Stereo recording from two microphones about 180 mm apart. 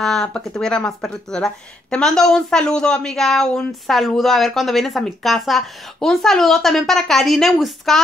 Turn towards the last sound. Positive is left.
turn(degrees=0)  # may be behind; listen again after turning